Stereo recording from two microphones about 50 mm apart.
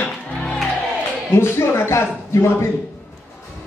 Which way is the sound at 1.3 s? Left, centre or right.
Left.